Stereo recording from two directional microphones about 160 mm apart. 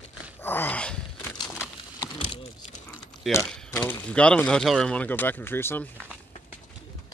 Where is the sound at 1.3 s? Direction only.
25° left (ahead or behind).